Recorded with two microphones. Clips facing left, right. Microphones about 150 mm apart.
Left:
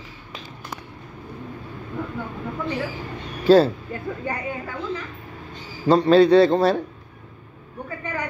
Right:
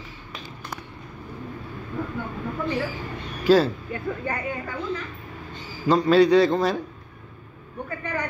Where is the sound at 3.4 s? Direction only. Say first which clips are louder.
Left 3 dB; 30° left (ahead or behind).